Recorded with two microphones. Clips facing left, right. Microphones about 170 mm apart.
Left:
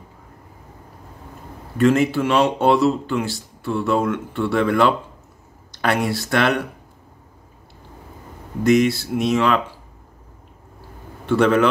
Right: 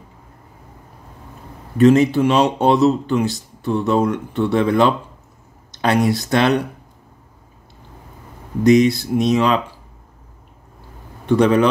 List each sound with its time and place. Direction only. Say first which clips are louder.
1.8 s speech: right 4 dB; 20° right (ahead or behind)
8.6 s speech: right 3 dB; 20° right (ahead or behind)
11.2 s speech: right 2 dB; 15° right (ahead or behind)